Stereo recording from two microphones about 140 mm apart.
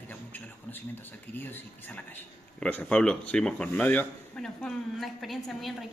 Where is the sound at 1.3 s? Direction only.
15° left (ahead or behind).